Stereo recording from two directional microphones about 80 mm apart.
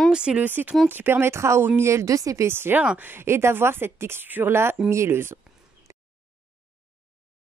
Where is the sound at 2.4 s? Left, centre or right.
Right.